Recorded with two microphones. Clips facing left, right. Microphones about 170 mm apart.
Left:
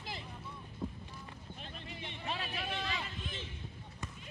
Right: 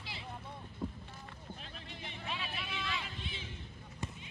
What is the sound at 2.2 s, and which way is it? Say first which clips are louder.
Vehicle: left 3 dB; 40° left (ahead or behind).